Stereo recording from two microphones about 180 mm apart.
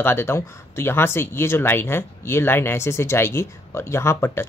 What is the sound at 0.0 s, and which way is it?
Speech, 15° left (ahead or behind).